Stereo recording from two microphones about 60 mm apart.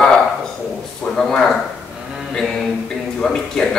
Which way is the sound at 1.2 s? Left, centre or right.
Centre.